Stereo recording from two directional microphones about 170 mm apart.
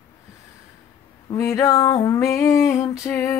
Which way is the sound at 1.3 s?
20° left (ahead or behind).